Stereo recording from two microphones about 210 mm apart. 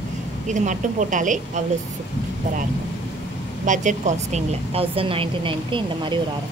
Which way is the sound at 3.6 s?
35° right (ahead or behind).